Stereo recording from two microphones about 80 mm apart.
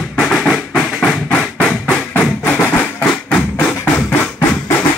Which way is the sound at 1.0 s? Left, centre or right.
Centre.